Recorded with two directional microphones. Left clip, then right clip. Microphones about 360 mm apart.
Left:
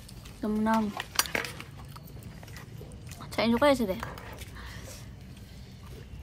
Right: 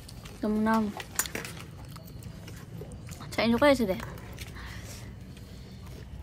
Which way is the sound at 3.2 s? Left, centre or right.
Centre.